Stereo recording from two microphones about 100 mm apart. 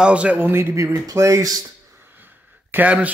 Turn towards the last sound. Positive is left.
turn(degrees=-15)  # may be behind; listen again after turning